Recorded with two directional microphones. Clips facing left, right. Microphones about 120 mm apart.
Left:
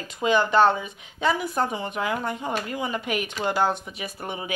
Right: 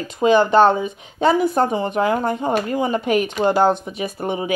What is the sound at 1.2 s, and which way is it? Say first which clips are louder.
Speech: right 8 dB; 35° right (ahead or behind).